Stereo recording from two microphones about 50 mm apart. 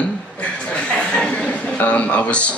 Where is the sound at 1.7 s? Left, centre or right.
Left.